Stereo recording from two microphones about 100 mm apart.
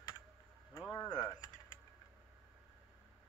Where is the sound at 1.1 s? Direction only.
40° left (ahead or behind).